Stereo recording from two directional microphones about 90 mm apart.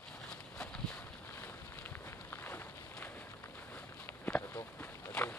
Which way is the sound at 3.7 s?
15° left (ahead or behind).